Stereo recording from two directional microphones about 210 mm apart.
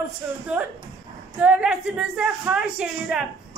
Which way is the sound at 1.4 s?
5° right (ahead or behind).